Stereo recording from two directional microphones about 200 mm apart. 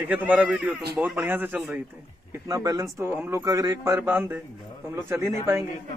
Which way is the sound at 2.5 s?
20° right (ahead or behind).